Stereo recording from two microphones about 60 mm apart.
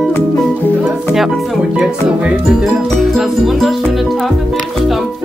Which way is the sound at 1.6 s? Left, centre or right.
Centre.